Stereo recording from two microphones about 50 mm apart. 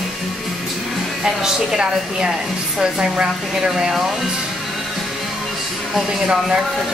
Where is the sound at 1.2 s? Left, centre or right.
Centre.